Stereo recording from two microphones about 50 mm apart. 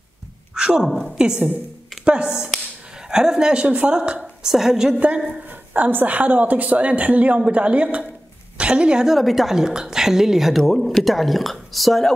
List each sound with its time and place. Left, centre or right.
0.6 s a woman's voice: centre
4.2 s a woman's voice: centre
5.0 s a woman's voice: right
9.0 s a woman's voice: centre